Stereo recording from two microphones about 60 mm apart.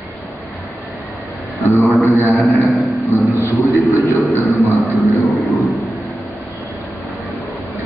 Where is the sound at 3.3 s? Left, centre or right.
Left.